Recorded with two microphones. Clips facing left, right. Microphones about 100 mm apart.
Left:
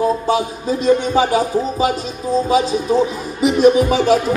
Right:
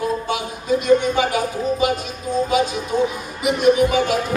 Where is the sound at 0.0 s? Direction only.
30° left (ahead or behind).